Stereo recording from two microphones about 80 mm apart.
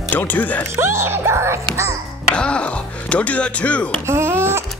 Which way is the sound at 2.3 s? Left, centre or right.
Centre.